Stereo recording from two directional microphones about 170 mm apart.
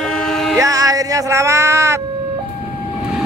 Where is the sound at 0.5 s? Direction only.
20° right (ahead or behind).